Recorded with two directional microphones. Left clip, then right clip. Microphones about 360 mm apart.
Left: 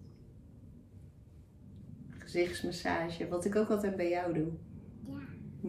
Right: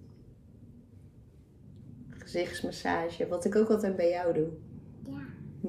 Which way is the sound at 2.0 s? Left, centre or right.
Centre.